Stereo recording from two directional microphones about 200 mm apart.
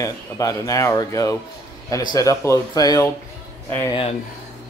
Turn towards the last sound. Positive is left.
turn(degrees=10)  # may be behind; listen again after turning